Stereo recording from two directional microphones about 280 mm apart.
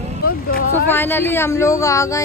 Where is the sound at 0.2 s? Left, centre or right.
Left.